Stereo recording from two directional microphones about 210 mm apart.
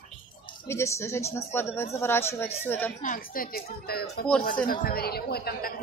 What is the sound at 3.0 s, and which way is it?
Speech, 40° left (ahead or behind).